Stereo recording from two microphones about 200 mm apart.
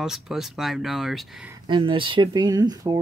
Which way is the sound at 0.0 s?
Centre (ahead or behind).